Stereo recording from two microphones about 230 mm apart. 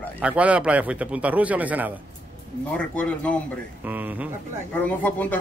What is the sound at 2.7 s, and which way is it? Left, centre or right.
Speech, centre.